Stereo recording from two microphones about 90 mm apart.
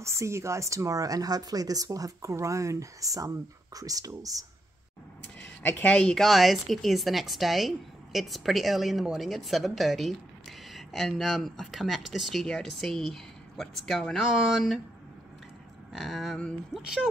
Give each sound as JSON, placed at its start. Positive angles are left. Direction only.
{"t": 0.0, "sound": "speech", "side_deg": -35}
{"t": 5.6, "sound": "speech", "side_deg": 20}
{"t": 15.9, "sound": "speech", "side_deg": 0}
{"t": 16.8, "sound": "speech", "side_deg": -10}